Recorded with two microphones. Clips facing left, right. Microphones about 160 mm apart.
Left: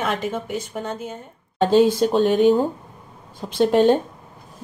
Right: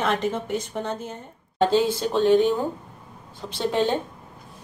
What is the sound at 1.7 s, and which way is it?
Speech, 50° left (ahead or behind).